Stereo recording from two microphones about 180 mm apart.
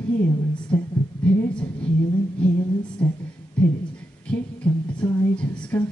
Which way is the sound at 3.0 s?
10° left (ahead or behind).